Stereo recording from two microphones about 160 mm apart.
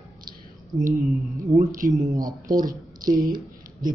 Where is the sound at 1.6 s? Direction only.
55° right (ahead or behind).